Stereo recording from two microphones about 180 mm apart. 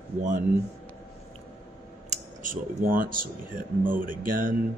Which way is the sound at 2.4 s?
50° right (ahead or behind).